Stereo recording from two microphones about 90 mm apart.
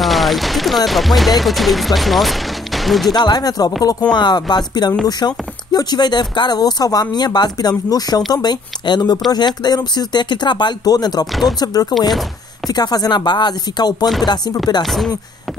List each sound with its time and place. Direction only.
0.0 s music: centre (ahead or behind)
0.8 s speech: centre (ahead or behind)
3.1 s speech: 50° left (ahead or behind)
14.9 s speech: centre (ahead or behind)